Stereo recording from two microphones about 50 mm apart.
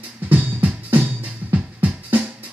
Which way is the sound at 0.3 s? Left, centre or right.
Right.